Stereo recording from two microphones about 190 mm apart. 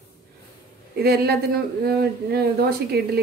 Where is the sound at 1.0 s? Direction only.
55° right (ahead or behind).